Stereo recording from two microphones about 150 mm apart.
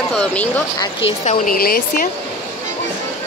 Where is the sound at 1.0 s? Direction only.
40° left (ahead or behind).